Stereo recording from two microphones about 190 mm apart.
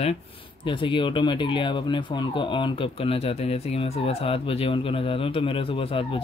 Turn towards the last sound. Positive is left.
turn(degrees=30)  # may be behind; listen again after turning